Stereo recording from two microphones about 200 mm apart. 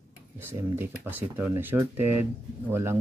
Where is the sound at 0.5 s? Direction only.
10° right (ahead or behind).